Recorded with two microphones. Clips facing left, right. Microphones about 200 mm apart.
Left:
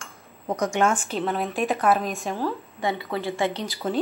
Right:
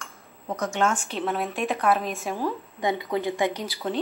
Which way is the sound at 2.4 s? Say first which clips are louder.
Left 1 dB; 15° right (ahead or behind).